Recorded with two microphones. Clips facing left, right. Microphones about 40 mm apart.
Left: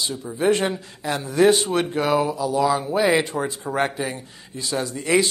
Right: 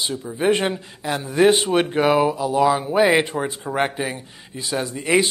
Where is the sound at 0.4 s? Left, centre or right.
Centre.